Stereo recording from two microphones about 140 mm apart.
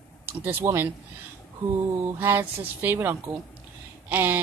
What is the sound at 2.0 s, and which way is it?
Speech, 15° right (ahead or behind).